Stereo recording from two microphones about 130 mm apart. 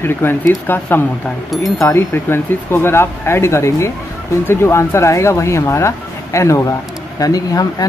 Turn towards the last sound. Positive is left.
turn(degrees=30)  # may be behind; listen again after turning